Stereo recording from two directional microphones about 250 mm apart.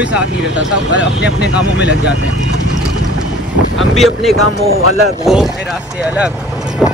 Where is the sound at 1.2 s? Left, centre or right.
Left.